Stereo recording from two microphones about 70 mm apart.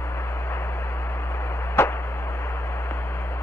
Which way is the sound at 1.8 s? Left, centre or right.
Left.